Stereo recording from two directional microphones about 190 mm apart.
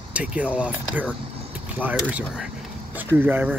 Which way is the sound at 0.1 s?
5° right (ahead or behind).